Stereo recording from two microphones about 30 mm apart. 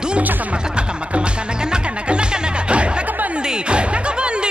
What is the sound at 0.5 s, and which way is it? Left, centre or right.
Music, right.